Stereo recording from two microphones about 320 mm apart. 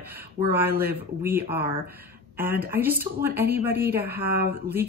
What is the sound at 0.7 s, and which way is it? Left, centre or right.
Speech, right.